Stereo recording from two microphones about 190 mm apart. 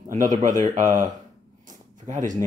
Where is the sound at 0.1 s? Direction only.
40° right (ahead or behind).